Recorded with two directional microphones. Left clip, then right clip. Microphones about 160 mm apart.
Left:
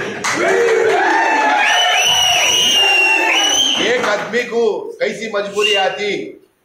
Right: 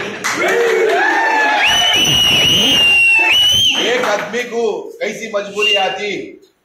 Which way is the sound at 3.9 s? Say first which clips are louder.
Even; 5° left (ahead or behind).